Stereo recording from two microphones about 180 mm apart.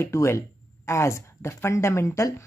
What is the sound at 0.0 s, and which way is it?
Speech, 15° left (ahead or behind).